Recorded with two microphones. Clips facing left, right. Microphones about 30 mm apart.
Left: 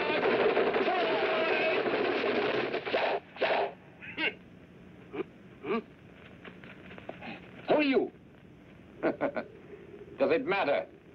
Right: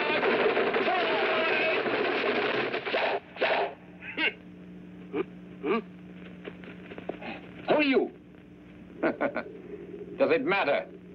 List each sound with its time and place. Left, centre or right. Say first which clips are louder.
0.0 s music: right 2 dB; centre
5.1 s a sound: right 6 dB; centre
10.1 s a man's voice: right 3 dB; centre